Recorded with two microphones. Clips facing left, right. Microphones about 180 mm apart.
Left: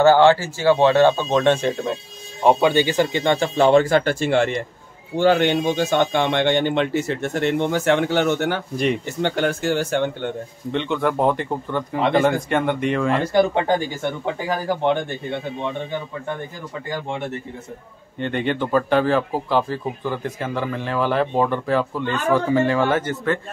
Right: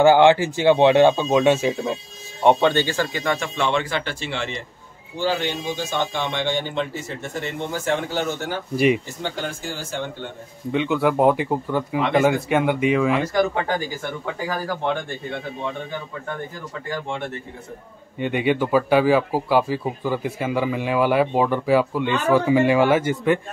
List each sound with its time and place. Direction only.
0.0 s speech: 15° right (ahead or behind)
2.4 s speech: 10° left (ahead or behind); by 8.6 s 65° left (ahead or behind)
8.7 s speech: 5° right (ahead or behind)
9.2 s speech: 65° left (ahead or behind)
10.7 s speech: 5° right (ahead or behind)
13.3 s speech: 30° left (ahead or behind)
18.2 s speech: 10° right (ahead or behind)